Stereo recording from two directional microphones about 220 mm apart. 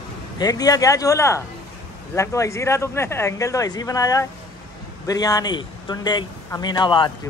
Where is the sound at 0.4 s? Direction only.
15° left (ahead or behind).